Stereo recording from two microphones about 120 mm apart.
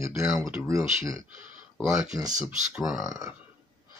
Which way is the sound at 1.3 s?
90° right.